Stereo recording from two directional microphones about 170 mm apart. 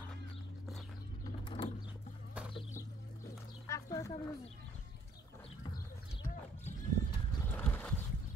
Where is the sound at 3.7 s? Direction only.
20° left (ahead or behind).